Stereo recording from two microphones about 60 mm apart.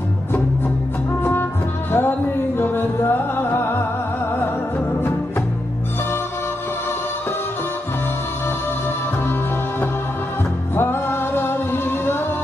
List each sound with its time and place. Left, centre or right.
1.9 s music: left
10.8 s music: left